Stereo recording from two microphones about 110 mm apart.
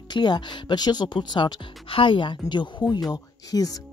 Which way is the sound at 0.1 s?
40° left (ahead or behind).